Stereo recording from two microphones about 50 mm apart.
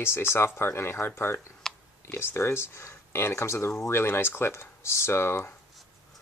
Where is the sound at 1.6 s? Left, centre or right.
Centre.